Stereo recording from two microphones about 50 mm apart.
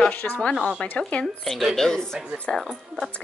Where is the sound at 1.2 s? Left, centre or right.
Centre.